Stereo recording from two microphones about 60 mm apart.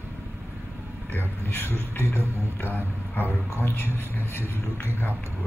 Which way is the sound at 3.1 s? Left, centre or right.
Left.